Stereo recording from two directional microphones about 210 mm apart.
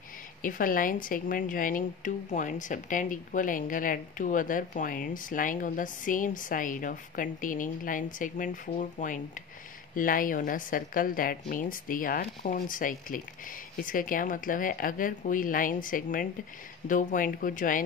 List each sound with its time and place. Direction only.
0.4 s speech: 40° left (ahead or behind)